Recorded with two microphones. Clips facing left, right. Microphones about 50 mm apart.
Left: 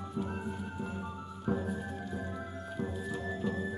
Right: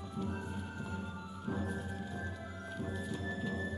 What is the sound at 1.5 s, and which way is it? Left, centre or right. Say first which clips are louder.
Music: left 3 dB; centre.